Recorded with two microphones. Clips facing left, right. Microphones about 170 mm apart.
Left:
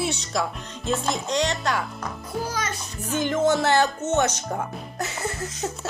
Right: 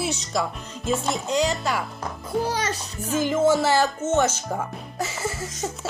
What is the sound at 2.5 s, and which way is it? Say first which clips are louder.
Music: right 3 dB; 35° right (ahead or behind).